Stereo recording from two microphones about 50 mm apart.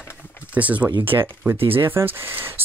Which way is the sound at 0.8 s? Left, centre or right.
Right.